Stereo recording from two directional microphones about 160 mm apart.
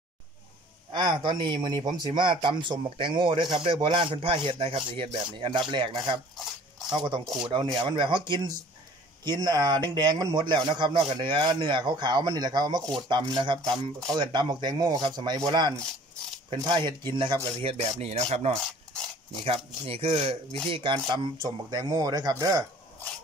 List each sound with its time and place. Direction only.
0.9 s a man's voice: 30° right (ahead or behind)
18.5 s rub: 5° left (ahead or behind)
19.4 s a man's voice: 40° right (ahead or behind); by 22.7 s 20° right (ahead or behind)